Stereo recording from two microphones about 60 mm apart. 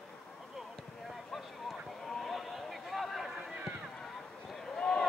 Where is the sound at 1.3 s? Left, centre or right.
Centre.